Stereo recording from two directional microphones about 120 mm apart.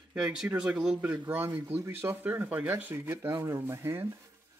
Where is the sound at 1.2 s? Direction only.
20° right (ahead or behind).